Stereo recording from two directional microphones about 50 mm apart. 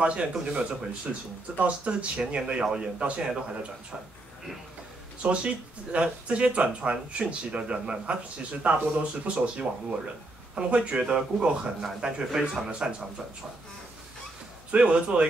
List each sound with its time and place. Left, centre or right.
0.0 s speech: right
1.1 s speech: centre
1.6 s speech: right
5.2 s speech: right
14.7 s speech: right